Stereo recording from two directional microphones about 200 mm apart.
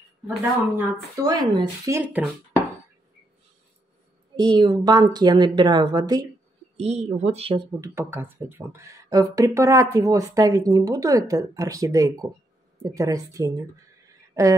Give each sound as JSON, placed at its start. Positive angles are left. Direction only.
{"t": 0.7, "sound": "speech", "side_deg": -15}
{"t": 4.4, "sound": "a woman's voice", "side_deg": -25}
{"t": 6.8, "sound": "speech", "side_deg": -30}
{"t": 7.8, "sound": "speech", "side_deg": -15}